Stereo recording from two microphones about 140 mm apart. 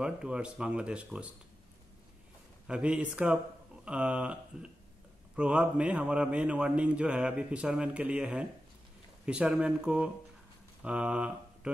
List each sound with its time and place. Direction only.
0.0 s a man's voice: 5° right (ahead or behind)
2.6 s a man's voice: 5° right (ahead or behind)
10.8 s a sound: 10° right (ahead or behind)